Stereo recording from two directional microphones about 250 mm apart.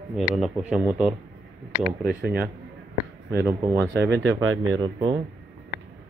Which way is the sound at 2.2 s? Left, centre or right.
Right.